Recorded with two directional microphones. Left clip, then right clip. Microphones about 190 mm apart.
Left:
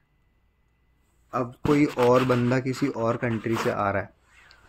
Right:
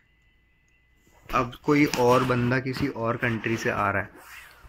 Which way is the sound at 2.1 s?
15° left (ahead or behind).